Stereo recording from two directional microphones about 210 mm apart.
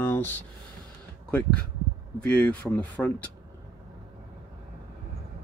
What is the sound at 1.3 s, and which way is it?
Speech, 5° left (ahead or behind).